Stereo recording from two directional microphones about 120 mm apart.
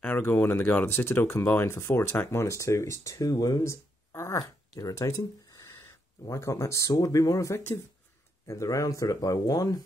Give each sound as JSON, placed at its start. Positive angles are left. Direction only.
{"t": 0.0, "sound": "speech", "side_deg": 15}